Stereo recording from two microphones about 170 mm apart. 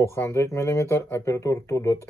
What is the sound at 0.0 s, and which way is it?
Speech, 15° left (ahead or behind).